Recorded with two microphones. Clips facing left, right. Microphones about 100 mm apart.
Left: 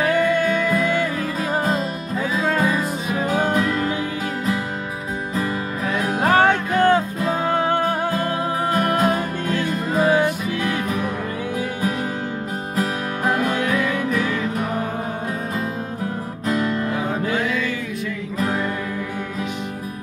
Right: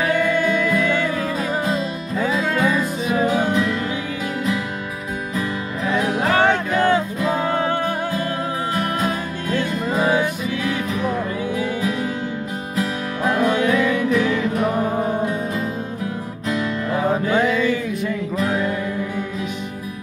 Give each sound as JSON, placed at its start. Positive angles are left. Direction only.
{"t": 0.0, "sound": "music", "side_deg": 45}
{"t": 6.0, "sound": "music", "side_deg": 45}
{"t": 8.7, "sound": "music", "side_deg": 50}
{"t": 12.7, "sound": "music", "side_deg": 50}
{"t": 16.4, "sound": "music", "side_deg": 45}